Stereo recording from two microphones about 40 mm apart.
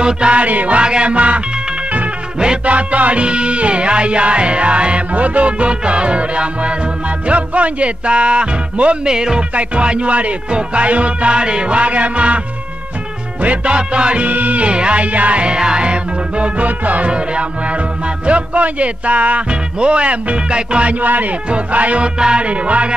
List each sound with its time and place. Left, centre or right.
0.0 s music: right
0.4 s music: right
2.3 s music: right
2.6 s music: right
9.0 s music: centre; by 12.4 s right
13.4 s music: right
14.2 s music: right
14.7 s music: right
17.1 s music: right
21.0 s speech: right
21.5 s music: right